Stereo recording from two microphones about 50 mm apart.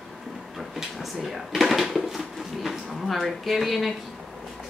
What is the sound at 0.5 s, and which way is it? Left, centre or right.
Drawer open or close, centre.